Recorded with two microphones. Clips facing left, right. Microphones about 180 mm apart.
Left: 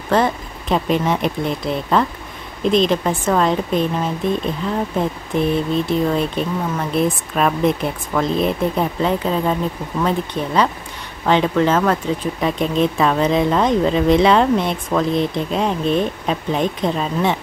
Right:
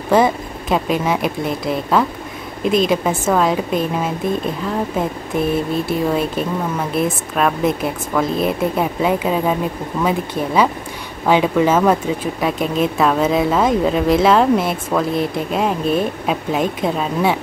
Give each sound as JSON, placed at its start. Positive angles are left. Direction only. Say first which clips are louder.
{"t": 0.1, "sound": "speech", "louder": "right 3 dB", "side_deg": -10}